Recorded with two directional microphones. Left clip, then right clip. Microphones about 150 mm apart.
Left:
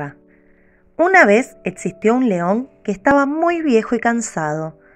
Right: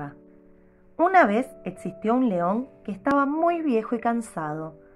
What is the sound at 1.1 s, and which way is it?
A woman's voice, 25° left (ahead or behind).